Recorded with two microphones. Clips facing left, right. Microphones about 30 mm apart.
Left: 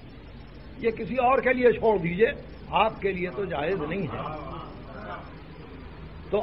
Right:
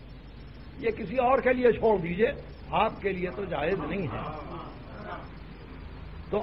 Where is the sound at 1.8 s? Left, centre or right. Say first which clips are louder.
Left 1 dB; centre.